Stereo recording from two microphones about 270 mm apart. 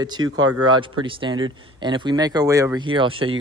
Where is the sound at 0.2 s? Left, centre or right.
Right.